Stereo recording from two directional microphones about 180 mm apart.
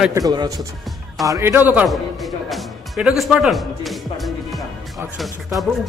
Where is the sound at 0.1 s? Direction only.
20° right (ahead or behind).